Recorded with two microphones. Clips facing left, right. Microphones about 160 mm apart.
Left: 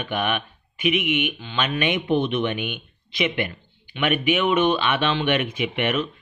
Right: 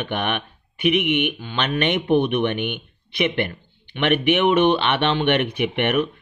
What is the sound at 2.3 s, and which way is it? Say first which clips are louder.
Speech: right 3 dB; 60° right (ahead or behind).